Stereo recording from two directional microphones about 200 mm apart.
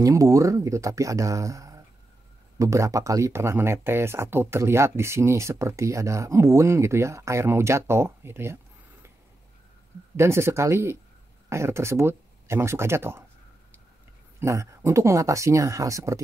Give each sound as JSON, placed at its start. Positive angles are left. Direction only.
{"t": 0.0, "sound": "speech", "side_deg": -15}
{"t": 10.1, "sound": "speech", "side_deg": -15}
{"t": 14.4, "sound": "speech", "side_deg": -15}